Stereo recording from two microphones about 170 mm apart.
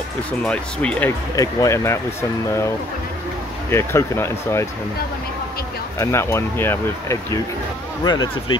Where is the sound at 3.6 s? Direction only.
15° left (ahead or behind).